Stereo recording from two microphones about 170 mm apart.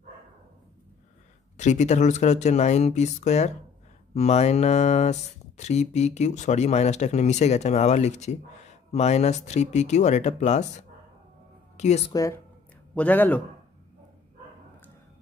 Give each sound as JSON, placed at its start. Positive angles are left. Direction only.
{"t": 1.6, "sound": "speech", "side_deg": 45}
{"t": 11.7, "sound": "music", "side_deg": 45}
{"t": 12.1, "sound": "speech", "side_deg": 20}
{"t": 12.9, "sound": "a man's voice", "side_deg": 10}